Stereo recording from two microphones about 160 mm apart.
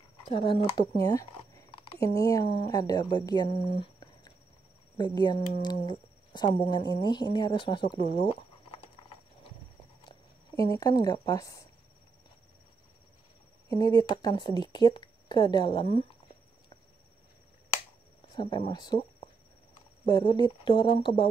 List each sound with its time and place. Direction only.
0.2 s speech: 35° left (ahead or behind)
0.9 s speech: 20° left (ahead or behind)
8.2 s a sound: 35° left (ahead or behind)
10.0 s speech: 20° left (ahead or behind)
13.7 s speech: 25° left (ahead or behind)
18.3 s speech: 30° left (ahead or behind)
20.1 s speech: 25° left (ahead or behind)